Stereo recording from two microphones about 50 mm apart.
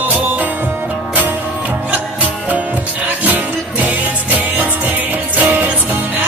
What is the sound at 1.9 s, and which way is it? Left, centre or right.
Music, right.